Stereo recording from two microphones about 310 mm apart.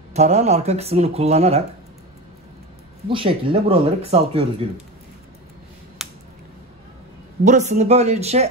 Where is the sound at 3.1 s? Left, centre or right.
Centre.